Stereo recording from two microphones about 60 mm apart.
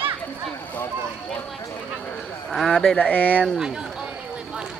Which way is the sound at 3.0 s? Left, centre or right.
Left.